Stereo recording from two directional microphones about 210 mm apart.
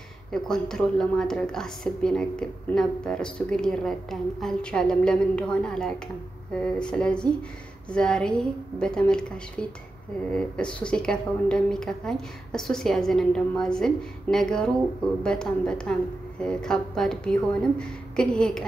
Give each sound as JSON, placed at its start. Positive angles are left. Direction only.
{"t": 0.3, "sound": "a woman's voice", "side_deg": 0}